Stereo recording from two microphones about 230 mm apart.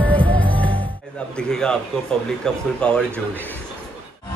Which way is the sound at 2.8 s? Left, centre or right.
Centre.